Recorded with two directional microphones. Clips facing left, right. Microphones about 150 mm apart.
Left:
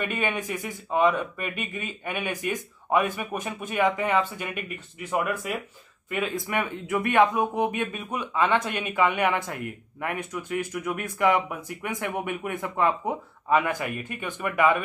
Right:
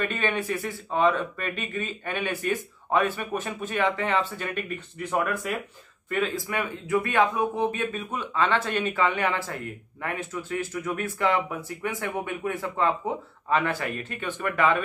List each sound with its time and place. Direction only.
0.0 s speech: 10° left (ahead or behind)